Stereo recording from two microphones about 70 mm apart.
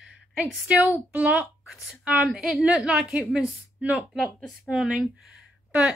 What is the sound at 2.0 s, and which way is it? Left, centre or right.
Speech, centre.